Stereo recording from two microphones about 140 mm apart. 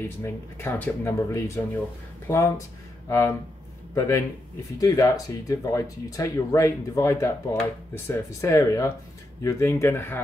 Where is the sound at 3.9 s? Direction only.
20° left (ahead or behind).